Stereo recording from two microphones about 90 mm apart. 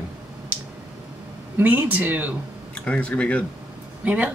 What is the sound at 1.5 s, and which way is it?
Speech, 20° right (ahead or behind).